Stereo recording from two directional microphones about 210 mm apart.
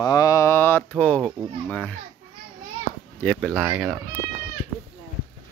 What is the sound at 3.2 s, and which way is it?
Speech, centre (ahead or behind).